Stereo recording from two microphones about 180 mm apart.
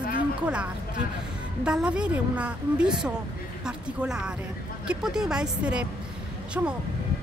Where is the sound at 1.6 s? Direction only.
5° right (ahead or behind).